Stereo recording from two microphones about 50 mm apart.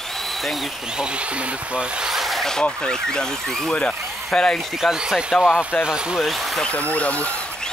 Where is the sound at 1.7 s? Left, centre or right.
Centre.